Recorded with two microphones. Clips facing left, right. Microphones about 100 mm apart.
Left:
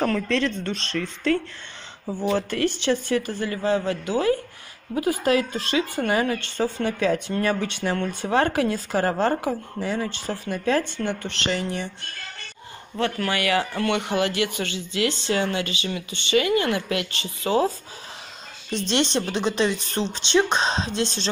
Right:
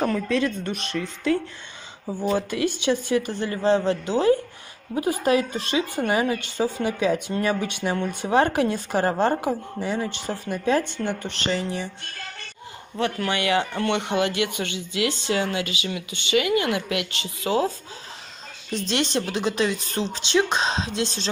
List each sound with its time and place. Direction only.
0.0 s speech: 10° right (ahead or behind)
12.9 s a woman's voice: 15° right (ahead or behind)